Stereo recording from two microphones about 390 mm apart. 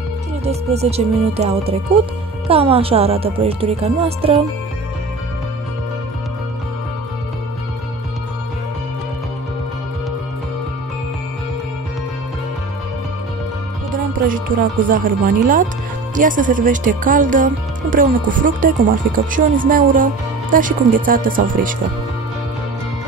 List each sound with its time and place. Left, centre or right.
0.5 s speech: centre
14.2 s speech: right